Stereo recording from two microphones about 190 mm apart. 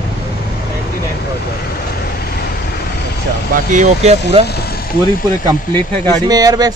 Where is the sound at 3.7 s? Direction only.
35° right (ahead or behind).